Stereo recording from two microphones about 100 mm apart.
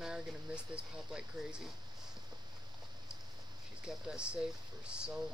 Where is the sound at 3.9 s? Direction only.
10° right (ahead or behind).